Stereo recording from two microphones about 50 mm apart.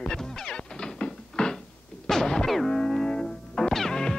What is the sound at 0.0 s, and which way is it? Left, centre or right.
Music, centre.